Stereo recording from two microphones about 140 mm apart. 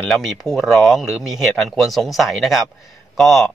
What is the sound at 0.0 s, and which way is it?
Speech, centre (ahead or behind).